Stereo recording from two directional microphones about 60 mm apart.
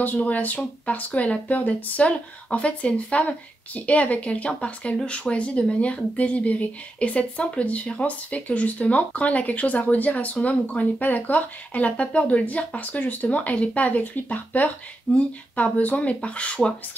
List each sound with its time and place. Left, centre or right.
0.0 s speech: left